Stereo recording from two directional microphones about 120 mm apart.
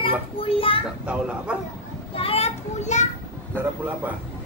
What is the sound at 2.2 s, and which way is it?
Children playing, 55° left (ahead or behind).